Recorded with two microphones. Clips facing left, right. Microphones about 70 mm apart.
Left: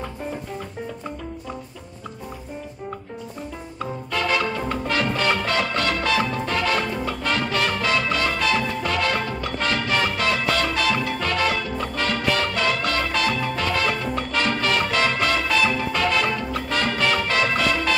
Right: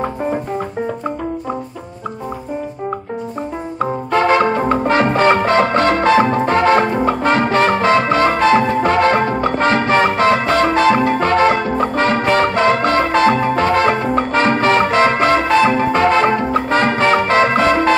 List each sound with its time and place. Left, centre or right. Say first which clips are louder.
0.0 s music: right 11 dB; right
3.8 s music: right 10 dB; right